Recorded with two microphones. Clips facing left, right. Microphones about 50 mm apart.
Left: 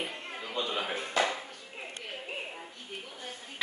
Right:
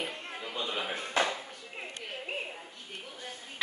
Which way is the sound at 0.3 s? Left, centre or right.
Centre.